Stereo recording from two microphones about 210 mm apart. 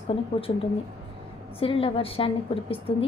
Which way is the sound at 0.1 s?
25° left (ahead or behind).